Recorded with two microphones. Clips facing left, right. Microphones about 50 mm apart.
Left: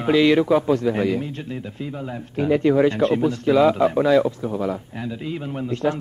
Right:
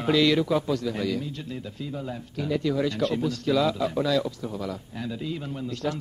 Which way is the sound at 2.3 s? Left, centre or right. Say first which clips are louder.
Left 9 dB; left.